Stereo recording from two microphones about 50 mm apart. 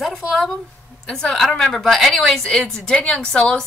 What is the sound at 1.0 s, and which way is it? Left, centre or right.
A woman's voice, centre.